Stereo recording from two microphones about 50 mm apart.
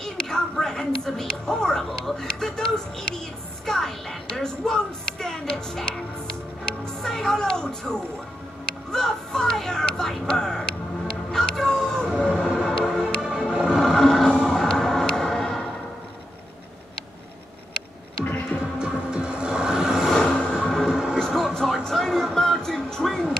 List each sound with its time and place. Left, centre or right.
0.0 s a woman's voice: centre
7.0 s speech: centre
11.3 s a sound: centre
12.4 s music: centre
13.6 s a sound: centre
14.4 s music: centre
18.2 s music: left
18.8 s music: centre
20.2 s vehicle: centre
20.5 s music: centre
20.9 s a sound: centre
21.3 s a sound: centre